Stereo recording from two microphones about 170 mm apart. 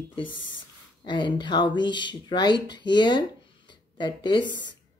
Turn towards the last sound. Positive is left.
turn(degrees=25)  # may be behind; listen again after turning